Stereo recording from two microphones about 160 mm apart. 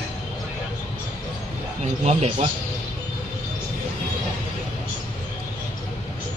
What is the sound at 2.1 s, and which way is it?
Speech, 45° right (ahead or behind).